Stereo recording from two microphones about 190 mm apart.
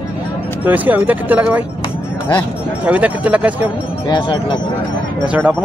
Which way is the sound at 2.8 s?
5° right (ahead or behind).